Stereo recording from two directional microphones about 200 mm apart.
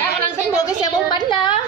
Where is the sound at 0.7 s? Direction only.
20° left (ahead or behind).